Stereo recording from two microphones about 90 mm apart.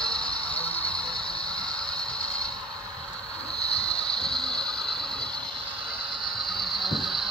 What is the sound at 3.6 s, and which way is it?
Mechanisms, 90° left.